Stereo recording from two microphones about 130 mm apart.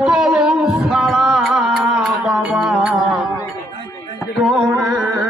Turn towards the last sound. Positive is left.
turn(degrees=0)  # may be behind; listen again after turning